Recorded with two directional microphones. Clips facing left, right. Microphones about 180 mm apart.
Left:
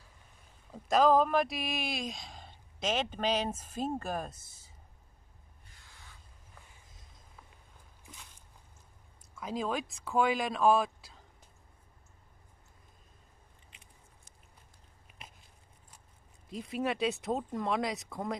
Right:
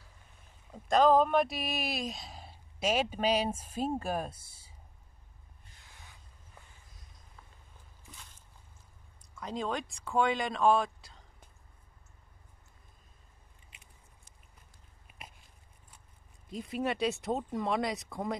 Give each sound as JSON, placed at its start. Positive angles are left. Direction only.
{"t": 0.7, "sound": "speech", "side_deg": 0}
{"t": 5.9, "sound": "a sound", "side_deg": -20}
{"t": 9.3, "sound": "speech", "side_deg": 5}
{"t": 16.4, "sound": "speech", "side_deg": 0}